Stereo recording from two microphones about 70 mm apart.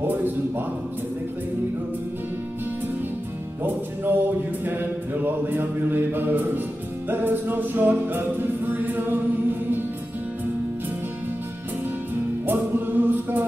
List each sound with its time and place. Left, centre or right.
0.1 s a sound: right
3.6 s music: right
4.6 s mantra: right
7.1 s music: right
12.4 s music: right